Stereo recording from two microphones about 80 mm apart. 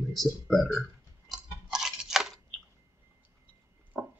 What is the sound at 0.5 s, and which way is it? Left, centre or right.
Speech, centre.